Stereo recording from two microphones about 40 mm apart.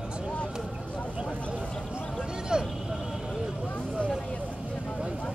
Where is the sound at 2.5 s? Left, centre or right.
Right.